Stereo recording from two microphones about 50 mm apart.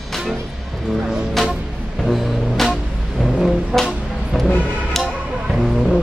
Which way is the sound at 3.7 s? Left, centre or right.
Centre.